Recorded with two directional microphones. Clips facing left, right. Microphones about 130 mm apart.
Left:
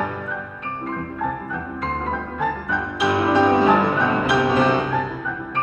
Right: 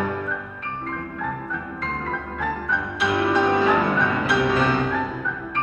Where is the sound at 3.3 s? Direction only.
20° left (ahead or behind).